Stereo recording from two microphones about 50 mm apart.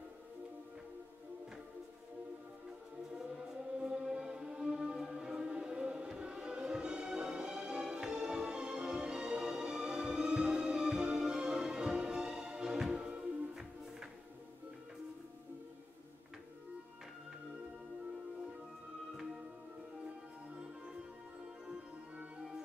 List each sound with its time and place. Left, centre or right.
3.8 s music: centre